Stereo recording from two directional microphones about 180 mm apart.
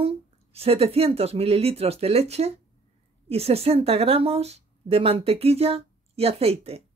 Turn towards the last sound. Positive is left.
turn(degrees=-35)  # may be behind; listen again after turning